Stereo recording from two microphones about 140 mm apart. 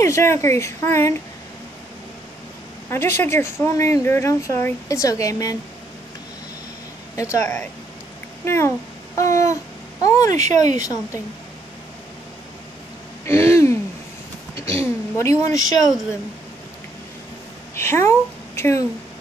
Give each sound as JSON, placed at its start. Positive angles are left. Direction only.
{"t": 0.0, "sound": "speech", "side_deg": 20}
{"t": 2.9, "sound": "speech", "side_deg": 15}
{"t": 7.4, "sound": "speech", "side_deg": 15}
{"t": 10.3, "sound": "speech", "side_deg": -60}
{"t": 10.8, "sound": "speech", "side_deg": 25}
{"t": 13.2, "sound": "speech", "side_deg": 20}
{"t": 14.8, "sound": "speech", "side_deg": 20}
{"t": 17.7, "sound": "speech", "side_deg": 20}